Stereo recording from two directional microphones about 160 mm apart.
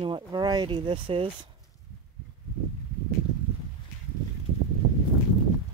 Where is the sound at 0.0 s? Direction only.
30° right (ahead or behind).